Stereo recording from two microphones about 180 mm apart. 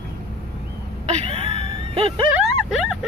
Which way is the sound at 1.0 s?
35° right (ahead or behind).